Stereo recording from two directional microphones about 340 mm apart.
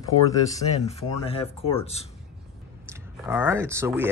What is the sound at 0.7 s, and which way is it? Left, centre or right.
Speech, centre.